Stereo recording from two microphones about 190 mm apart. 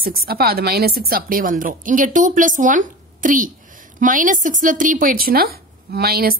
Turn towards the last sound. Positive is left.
turn(degrees=-55)  # may be behind; listen again after turning